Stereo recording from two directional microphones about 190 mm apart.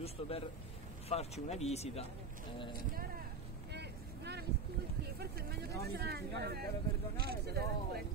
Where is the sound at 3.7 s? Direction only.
60° right (ahead or behind).